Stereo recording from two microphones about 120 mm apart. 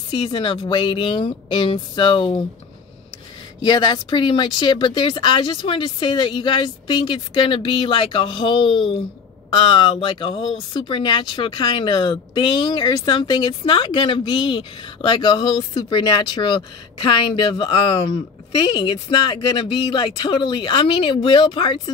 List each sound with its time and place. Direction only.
0.1 s speech: 40° left (ahead or behind)
3.6 s speech: 35° left (ahead or behind)